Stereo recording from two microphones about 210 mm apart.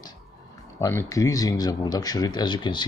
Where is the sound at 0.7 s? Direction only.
15° left (ahead or behind).